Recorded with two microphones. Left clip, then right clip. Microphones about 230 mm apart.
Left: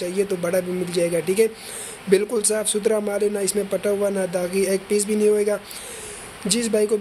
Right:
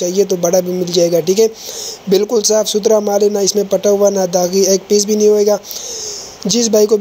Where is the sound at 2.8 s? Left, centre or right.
Centre.